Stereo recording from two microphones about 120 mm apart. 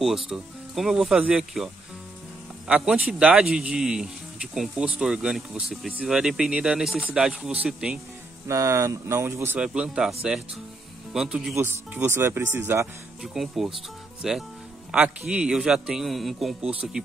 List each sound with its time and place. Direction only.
0.3 s speech: 5° right (ahead or behind)
2.7 s speech: 5° right (ahead or behind)
8.5 s speech: 25° right (ahead or behind)
9.6 s speech: 10° right (ahead or behind)
11.5 s speech: 15° right (ahead or behind)
13.2 s speech: 5° right (ahead or behind)